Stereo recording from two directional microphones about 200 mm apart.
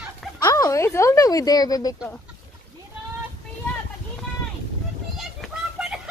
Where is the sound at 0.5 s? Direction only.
15° left (ahead or behind).